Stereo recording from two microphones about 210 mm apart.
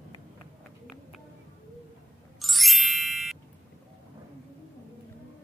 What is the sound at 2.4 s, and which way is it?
Music, centre (ahead or behind).